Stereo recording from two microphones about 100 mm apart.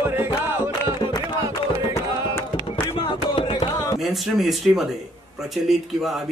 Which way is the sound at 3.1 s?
55° left (ahead or behind).